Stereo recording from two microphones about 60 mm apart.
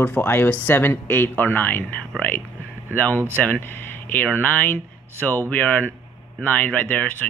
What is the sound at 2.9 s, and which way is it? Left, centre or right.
Speech, left.